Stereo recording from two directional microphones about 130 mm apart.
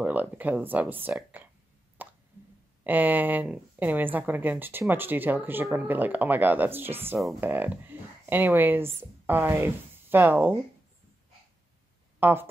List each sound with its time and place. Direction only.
0.0 s speech: 10° right (ahead or behind)
2.0 s plop: 15° right (ahead or behind)
2.8 s speech: 15° right (ahead or behind)
12.2 s speech: 15° right (ahead or behind)